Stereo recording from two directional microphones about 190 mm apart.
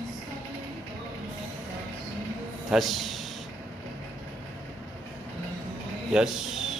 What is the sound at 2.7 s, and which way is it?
Speech, centre (ahead or behind).